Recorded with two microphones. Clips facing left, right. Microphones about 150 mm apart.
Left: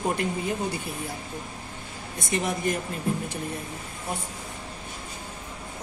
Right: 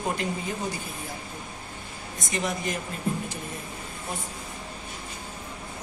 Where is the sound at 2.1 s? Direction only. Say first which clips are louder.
Left 2 dB; 55° left (ahead or behind).